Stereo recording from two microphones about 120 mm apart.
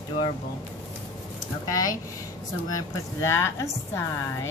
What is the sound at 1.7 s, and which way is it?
Speech, 30° left (ahead or behind).